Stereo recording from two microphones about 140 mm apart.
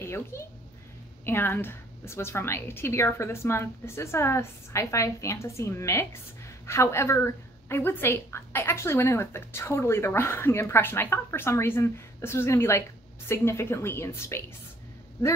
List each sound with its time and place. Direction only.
0.0 s a child's voice: 20° left (ahead or behind)